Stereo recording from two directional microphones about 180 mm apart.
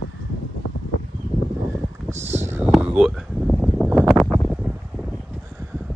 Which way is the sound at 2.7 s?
5° right (ahead or behind).